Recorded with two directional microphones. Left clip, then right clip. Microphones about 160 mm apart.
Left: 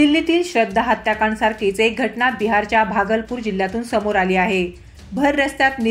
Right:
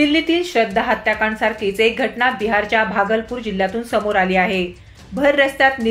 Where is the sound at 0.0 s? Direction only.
35° left (ahead or behind).